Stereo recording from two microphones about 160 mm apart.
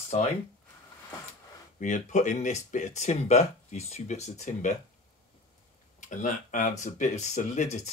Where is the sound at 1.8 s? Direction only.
50° left (ahead or behind).